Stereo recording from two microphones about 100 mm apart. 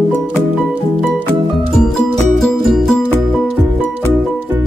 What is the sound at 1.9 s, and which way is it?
Music, 5° left (ahead or behind).